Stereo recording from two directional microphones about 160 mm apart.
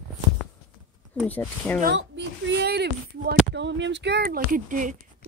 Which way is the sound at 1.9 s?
90° right.